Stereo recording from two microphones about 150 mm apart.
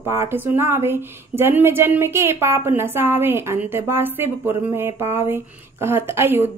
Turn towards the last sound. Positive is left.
turn(degrees=-15)  # may be behind; listen again after turning